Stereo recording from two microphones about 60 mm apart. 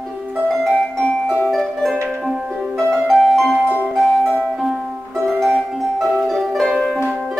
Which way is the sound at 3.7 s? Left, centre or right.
Left.